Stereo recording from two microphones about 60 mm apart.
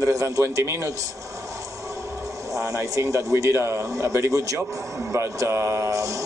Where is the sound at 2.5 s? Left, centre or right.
Right.